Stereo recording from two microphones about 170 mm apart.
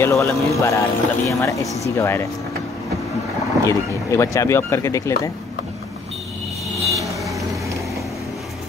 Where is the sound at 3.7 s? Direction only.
20° left (ahead or behind).